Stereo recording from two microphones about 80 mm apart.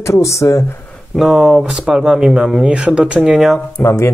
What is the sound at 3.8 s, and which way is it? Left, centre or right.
Speech, left.